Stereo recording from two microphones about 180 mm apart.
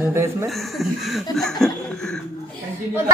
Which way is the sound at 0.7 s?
Centre (ahead or behind).